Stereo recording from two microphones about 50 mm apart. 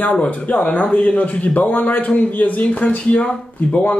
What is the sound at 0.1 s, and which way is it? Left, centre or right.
Speech, left.